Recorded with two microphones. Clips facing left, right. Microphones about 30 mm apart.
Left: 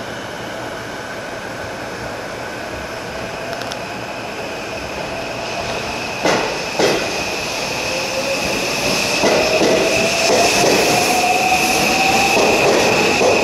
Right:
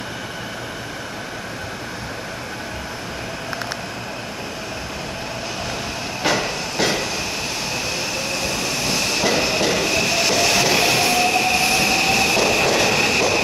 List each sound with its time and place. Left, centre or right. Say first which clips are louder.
6.3 s train: left 4 dB; centre